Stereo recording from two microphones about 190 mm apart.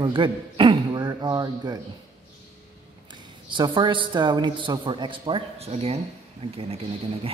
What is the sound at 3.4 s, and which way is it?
A woman's voice, 25° right (ahead or behind).